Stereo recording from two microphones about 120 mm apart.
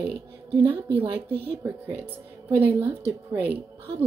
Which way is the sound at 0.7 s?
15° right (ahead or behind).